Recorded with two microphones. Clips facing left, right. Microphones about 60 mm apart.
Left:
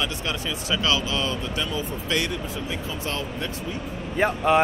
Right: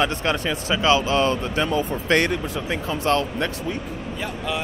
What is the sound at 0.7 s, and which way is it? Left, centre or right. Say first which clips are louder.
Speech: right 6 dB; right.